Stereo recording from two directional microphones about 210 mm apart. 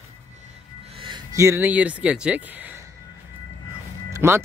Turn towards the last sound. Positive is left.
turn(degrees=-10)  # may be behind; listen again after turning